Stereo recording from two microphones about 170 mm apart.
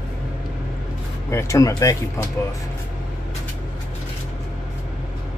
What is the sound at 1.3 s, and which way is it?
Speech, 15° left (ahead or behind).